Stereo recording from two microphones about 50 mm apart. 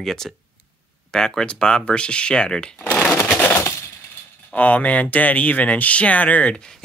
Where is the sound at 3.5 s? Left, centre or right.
Left.